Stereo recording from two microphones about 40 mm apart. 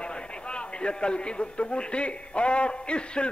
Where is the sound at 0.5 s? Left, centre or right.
Left.